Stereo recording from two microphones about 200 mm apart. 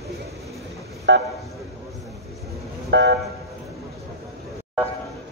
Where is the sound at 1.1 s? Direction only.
65° right (ahead or behind).